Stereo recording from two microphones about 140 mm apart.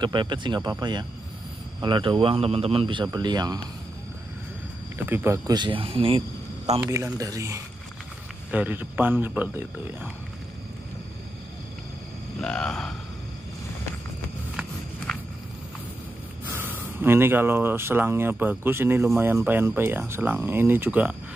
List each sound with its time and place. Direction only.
0.0 s speech: 35° right (ahead or behind)
4.9 s speech: 15° right (ahead or behind)
5.5 s speech: 35° right (ahead or behind)
7.2 s speech: 25° right (ahead or behind)
8.5 s speech: 10° right (ahead or behind)
12.4 s grunt: 5° left (ahead or behind)
16.4 s speech: 15° right (ahead or behind)